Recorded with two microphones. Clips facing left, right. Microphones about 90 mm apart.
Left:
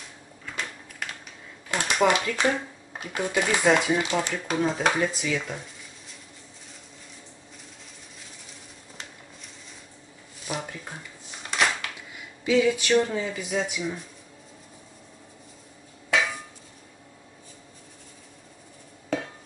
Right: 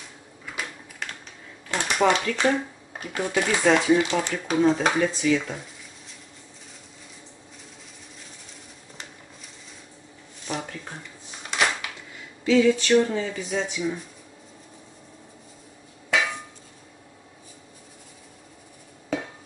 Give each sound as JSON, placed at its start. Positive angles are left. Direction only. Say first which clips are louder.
{"t": 0.5, "sound": "typewriter", "louder": "even", "side_deg": -5}
{"t": 1.0, "sound": "typing", "louder": "even", "side_deg": 5}
{"t": 2.0, "sound": "speech", "louder": "right 1 dB", "side_deg": 5}
{"t": 4.3, "sound": "speech", "louder": "right 5 dB", "side_deg": -5}
{"t": 10.4, "sound": "a sound", "louder": "right 1 dB", "side_deg": 5}
{"t": 12.4, "sound": "speech", "louder": "right 3 dB", "side_deg": 10}
{"t": 16.1, "sound": "hammer", "louder": "even", "side_deg": 0}
{"t": 19.0, "sound": "a sound", "louder": "even", "side_deg": -5}